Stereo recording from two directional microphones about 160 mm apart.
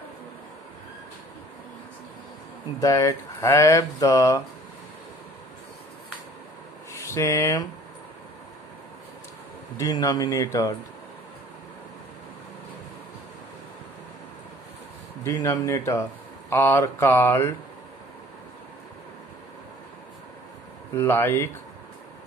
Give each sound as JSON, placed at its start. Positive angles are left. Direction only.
{"t": 2.8, "sound": "speech", "side_deg": 20}
{"t": 6.9, "sound": "speech", "side_deg": 20}
{"t": 9.8, "sound": "speech", "side_deg": 20}
{"t": 15.2, "sound": "speech", "side_deg": 20}
{"t": 20.9, "sound": "speech", "side_deg": 15}